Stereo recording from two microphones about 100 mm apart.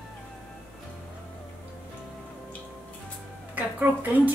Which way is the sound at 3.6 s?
15° right (ahead or behind).